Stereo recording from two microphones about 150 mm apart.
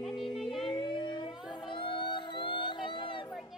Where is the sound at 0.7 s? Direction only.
30° left (ahead or behind).